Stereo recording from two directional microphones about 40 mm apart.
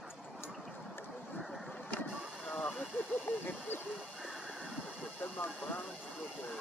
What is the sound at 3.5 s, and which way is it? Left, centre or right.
Vehicle, left.